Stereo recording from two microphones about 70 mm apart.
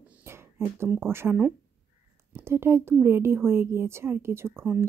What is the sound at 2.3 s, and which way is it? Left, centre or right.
A woman's voice, right.